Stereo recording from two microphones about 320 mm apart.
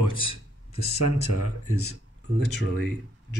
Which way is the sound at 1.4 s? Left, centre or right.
Left.